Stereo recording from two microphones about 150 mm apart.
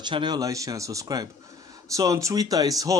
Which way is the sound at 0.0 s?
30° right (ahead or behind).